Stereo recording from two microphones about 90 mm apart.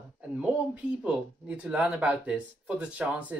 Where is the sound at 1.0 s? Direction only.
15° right (ahead or behind).